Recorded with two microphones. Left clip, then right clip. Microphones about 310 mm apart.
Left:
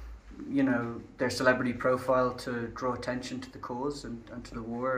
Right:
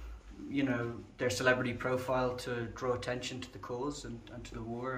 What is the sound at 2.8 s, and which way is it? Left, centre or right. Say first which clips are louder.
Speech: left 2 dB; centre.